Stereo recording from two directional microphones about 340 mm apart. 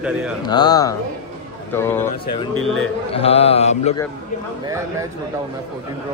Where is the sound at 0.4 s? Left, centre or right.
Centre.